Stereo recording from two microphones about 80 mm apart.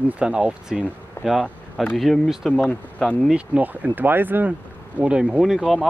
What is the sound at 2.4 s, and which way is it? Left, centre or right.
Speech, centre.